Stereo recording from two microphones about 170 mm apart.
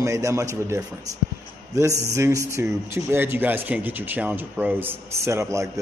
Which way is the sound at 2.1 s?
15° right (ahead or behind).